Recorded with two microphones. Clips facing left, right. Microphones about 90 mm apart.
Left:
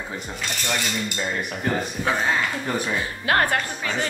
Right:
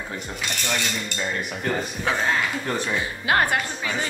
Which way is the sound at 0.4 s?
Centre (ahead or behind).